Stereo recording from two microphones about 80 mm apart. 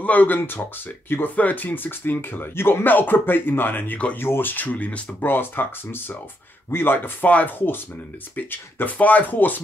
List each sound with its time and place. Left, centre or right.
0.0 s speech: left